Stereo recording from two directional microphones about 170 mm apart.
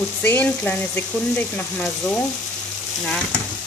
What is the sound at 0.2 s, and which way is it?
Sizzle, 10° left (ahead or behind).